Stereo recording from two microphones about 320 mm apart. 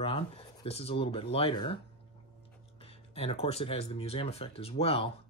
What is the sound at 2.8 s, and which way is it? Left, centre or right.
Speech, centre.